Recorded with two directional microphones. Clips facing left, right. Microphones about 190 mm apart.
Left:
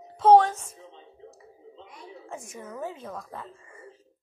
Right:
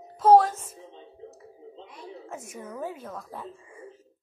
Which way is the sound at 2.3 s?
5° right (ahead or behind).